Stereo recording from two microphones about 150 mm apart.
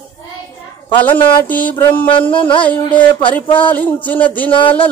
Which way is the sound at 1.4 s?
10° left (ahead or behind).